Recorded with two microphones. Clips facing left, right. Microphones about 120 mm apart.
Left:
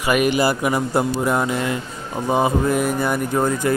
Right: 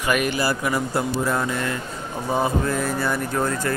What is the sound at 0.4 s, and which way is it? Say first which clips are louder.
A man's voice: left 4 dB; 20° left (ahead or behind).